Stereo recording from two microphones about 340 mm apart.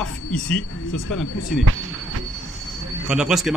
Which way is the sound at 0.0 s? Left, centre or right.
Centre.